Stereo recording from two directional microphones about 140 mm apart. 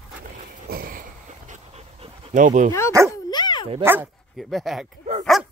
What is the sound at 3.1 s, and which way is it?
Dog, 30° left (ahead or behind).